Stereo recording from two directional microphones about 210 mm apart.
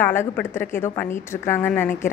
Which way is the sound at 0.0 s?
10° left (ahead or behind).